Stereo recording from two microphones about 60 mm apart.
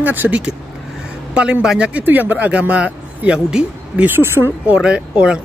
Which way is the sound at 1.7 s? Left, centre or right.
Centre.